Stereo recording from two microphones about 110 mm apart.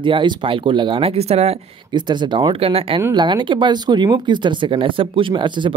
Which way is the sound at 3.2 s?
45° right (ahead or behind).